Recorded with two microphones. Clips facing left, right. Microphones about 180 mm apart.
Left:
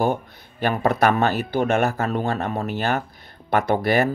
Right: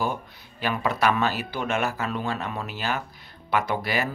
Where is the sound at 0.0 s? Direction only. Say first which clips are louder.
Left 7 dB; 55° left (ahead or behind).